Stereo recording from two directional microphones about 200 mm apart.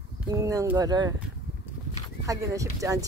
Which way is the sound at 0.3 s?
15° right (ahead or behind).